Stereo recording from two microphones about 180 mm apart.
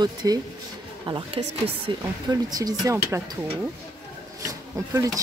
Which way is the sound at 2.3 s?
20° right (ahead or behind).